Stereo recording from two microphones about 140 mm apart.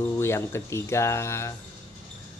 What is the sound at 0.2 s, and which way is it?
Speech, 20° left (ahead or behind).